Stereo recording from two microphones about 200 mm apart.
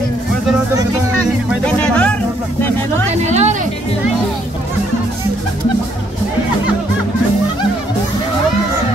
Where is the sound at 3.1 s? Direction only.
35° right (ahead or behind).